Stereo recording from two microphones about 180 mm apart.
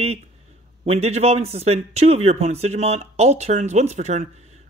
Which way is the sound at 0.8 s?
35° right (ahead or behind).